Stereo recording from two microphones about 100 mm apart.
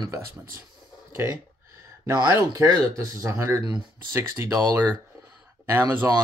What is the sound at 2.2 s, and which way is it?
Speech, 25° right (ahead or behind).